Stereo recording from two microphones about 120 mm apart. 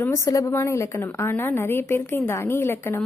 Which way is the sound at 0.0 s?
25° left (ahead or behind).